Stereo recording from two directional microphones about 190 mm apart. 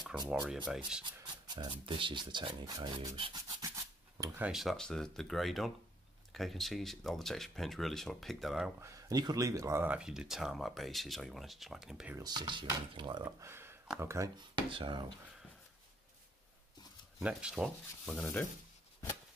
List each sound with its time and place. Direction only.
0.3 s speech: 5° right (ahead or behind)
1.0 s speech: 25° right (ahead or behind)
4.5 s speech: centre (ahead or behind)
8.8 s speech: 20° right (ahead or behind); by 12.2 s 5° right (ahead or behind)
12.2 s speech: 25° right (ahead or behind)
17.2 s speech: 5° right (ahead or behind)